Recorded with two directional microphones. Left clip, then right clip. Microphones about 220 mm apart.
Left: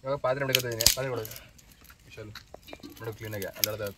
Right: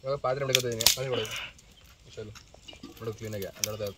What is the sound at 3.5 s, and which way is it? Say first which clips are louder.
Speech: left 2 dB; 30° left (ahead or behind).